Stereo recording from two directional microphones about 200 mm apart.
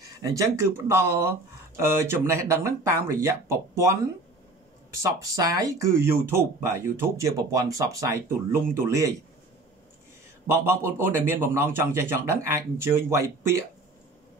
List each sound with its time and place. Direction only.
0.2 s speech: 15° right (ahead or behind)
4.9 s speech: 15° right (ahead or behind)
10.4 s speech: 10° right (ahead or behind)